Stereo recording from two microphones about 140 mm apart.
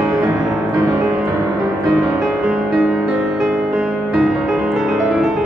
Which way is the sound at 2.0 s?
Centre (ahead or behind).